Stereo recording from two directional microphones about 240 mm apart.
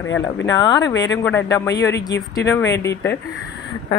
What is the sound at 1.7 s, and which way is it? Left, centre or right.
Speech, left.